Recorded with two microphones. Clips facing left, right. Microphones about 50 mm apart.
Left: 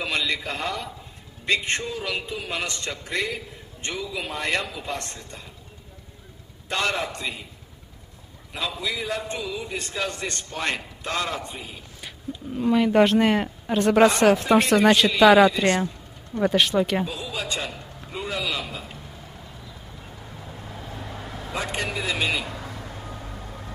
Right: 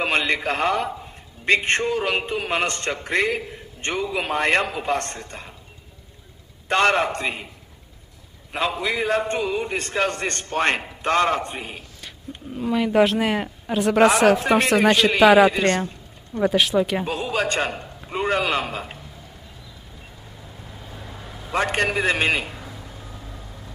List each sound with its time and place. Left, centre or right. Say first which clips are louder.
0.0 s a man's voice: right 5 dB; right
6.7 s a man's voice: right 7 dB; right
8.5 s a man's voice: right 6 dB; right
12.5 s a man's voice: even; centre
17.0 s a man's voice: right 6 dB; right
20.9 s vehicle: left 2 dB; centre
21.5 s a man's voice: right 7 dB; right
22.6 s a sound: left 2 dB; left